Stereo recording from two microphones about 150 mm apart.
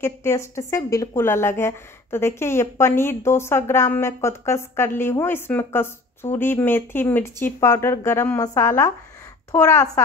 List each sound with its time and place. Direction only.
0.0 s a woman's voice: 20° left (ahead or behind)